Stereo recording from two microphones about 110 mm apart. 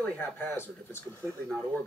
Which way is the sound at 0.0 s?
15° left (ahead or behind).